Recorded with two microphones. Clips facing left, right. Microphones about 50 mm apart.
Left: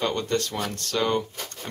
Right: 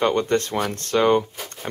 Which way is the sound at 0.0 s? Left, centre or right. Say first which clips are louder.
Right 6 dB; right.